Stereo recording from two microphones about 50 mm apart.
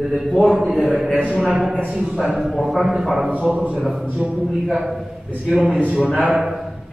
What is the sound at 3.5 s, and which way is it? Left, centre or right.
Speech, right.